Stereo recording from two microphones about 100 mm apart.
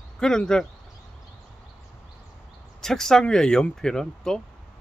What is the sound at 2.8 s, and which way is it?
Speech, 5° left (ahead or behind).